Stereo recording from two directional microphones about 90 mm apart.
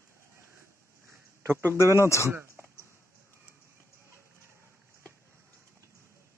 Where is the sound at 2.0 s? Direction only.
30° left (ahead or behind).